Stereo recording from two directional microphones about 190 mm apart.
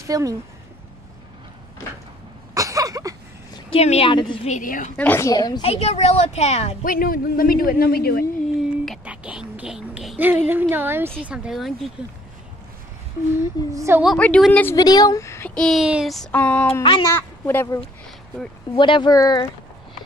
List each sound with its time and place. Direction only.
0.0 s speech: 15° right (ahead or behind)
2.5 s a sound: 15° right (ahead or behind)
3.5 s a woman's voice: 30° left (ahead or behind)
4.6 s a man's voice: 45° left (ahead or behind)
4.9 s speech: 10° left (ahead or behind)
5.6 s a woman's voice: 30° left (ahead or behind)
6.8 s a man's voice: 50° left (ahead or behind)
8.8 s a sound: 5° right (ahead or behind)
10.5 s a woman's voice: 10° right (ahead or behind)
13.7 s a woman's voice: 15° right (ahead or behind)
14.0 s speech: 5° left (ahead or behind)
16.8 s speech: 25° left (ahead or behind)
17.5 s speech: 10° left (ahead or behind)
18.8 s speech: 25° left (ahead or behind)